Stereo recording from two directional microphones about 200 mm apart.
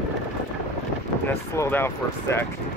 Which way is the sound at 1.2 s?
10° left (ahead or behind).